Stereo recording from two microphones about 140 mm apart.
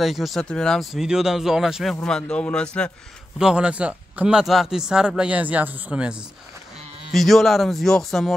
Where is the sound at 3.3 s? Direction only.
5° right (ahead or behind).